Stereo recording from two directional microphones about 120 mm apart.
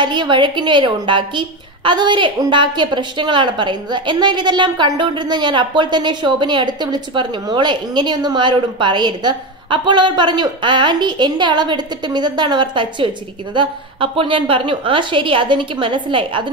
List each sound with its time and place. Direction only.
0.0 s a woman's voice: 40° right (ahead or behind)